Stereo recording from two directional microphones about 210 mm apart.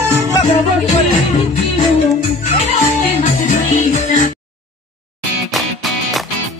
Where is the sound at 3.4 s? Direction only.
35° left (ahead or behind).